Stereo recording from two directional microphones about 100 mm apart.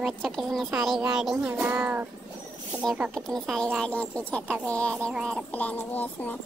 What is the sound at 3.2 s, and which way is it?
Speech, 5° left (ahead or behind).